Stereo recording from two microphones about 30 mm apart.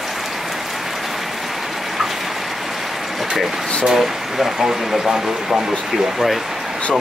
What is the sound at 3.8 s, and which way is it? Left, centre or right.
Speech, centre.